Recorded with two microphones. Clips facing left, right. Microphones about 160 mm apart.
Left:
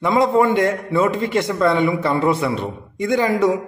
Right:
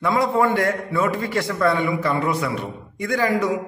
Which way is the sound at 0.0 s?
20° left (ahead or behind).